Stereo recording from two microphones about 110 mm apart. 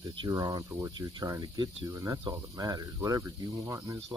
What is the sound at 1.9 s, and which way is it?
Speech, 25° right (ahead or behind).